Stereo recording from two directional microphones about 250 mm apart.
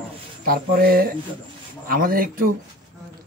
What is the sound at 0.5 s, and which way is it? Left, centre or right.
Speech, right.